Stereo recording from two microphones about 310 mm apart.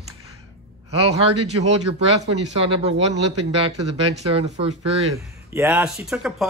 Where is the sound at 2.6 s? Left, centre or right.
Centre.